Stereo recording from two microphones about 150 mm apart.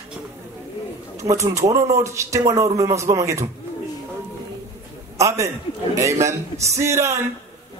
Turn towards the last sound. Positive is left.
turn(degrees=-20)  # may be behind; listen again after turning